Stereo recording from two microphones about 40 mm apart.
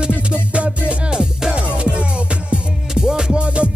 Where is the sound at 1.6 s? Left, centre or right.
Right.